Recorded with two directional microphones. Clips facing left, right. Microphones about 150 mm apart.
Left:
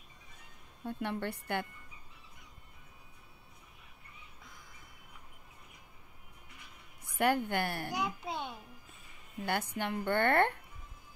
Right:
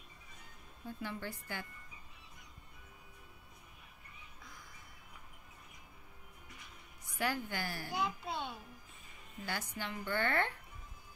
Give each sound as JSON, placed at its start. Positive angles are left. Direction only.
{"t": 0.8, "sound": "a woman's voice", "side_deg": 65}
{"t": 7.1, "sound": "a woman's voice", "side_deg": 55}
{"t": 7.9, "sound": "a child's voice", "side_deg": 15}
{"t": 9.4, "sound": "a woman's voice", "side_deg": 60}